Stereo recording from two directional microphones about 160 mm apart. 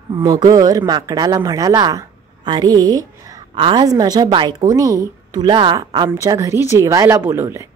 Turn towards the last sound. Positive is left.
turn(degrees=-15)  # may be behind; listen again after turning